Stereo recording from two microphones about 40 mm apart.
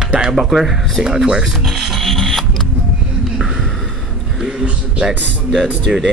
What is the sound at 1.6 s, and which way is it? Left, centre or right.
Music, centre.